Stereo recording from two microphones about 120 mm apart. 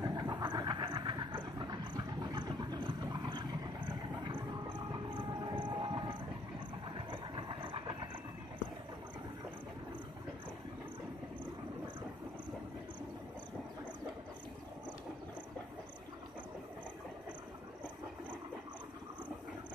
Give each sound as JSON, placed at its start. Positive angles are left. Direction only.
{"t": 0.0, "sound": "vehicle", "side_deg": -35}